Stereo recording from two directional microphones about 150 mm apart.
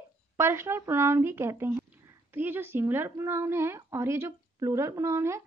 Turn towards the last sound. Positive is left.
turn(degrees=-20)  # may be behind; listen again after turning